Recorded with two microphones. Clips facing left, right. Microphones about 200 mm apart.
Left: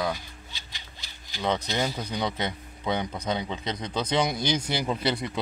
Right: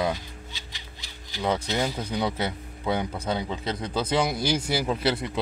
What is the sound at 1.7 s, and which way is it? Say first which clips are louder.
Speech: right 2 dB; 5° right (ahead or behind).